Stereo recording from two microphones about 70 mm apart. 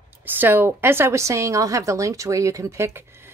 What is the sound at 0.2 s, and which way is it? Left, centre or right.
A woman's voice, right.